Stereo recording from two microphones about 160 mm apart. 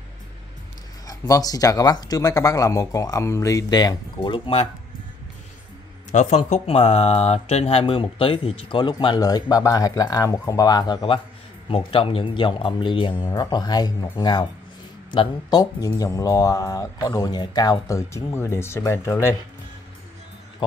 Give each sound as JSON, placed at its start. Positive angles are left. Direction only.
{"t": 1.0, "sound": "speech", "side_deg": 20}
{"t": 6.1, "sound": "speech", "side_deg": 45}